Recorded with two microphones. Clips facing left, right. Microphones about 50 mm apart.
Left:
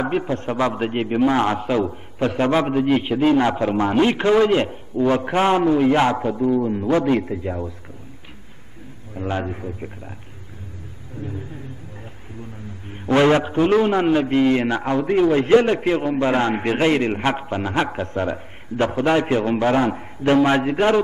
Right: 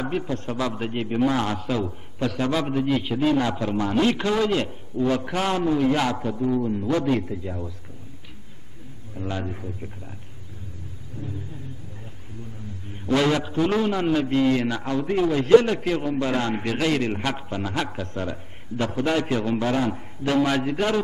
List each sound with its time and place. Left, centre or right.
0.1 s a man's voice: left
9.1 s a man's voice: left
12.9 s a man's voice: left